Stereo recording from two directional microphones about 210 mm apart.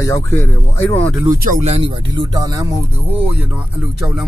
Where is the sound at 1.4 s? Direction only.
35° right (ahead or behind); by 4.2 s 10° right (ahead or behind).